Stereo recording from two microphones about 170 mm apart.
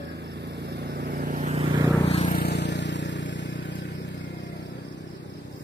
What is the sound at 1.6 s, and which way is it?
Vehicle, 25° right (ahead or behind).